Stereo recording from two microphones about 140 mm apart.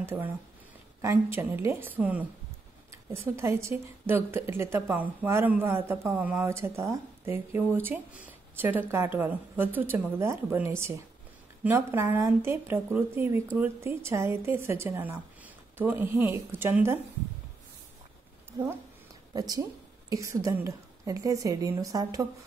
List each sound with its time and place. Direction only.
0.0 s a woman's voice: 15° right (ahead or behind)
18.5 s a woman's voice: 20° right (ahead or behind)